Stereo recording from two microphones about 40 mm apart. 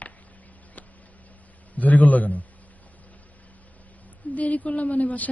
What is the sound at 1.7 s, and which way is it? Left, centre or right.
Speech, left.